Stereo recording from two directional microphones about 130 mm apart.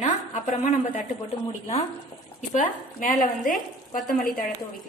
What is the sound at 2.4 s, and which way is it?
A woman's voice, 80° left.